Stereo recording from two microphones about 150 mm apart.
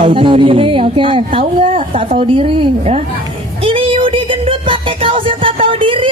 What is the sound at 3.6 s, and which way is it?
Music, 35° right (ahead or behind).